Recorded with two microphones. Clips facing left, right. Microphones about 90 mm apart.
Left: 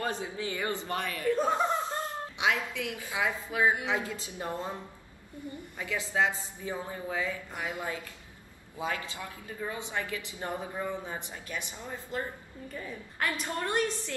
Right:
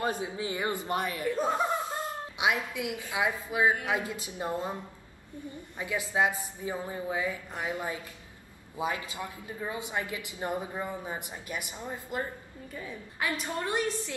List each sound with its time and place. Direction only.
0.0 s a woman's voice: 20° right (ahead or behind)
5.8 s a woman's voice: 20° right (ahead or behind)
12.7 s a woman's voice: centre (ahead or behind)
13.5 s speech: 15° right (ahead or behind)